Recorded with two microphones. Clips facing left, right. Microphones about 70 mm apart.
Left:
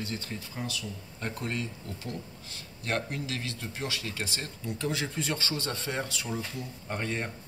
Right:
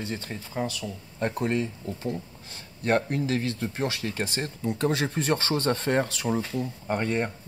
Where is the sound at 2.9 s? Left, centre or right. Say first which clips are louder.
Right 8 dB; right.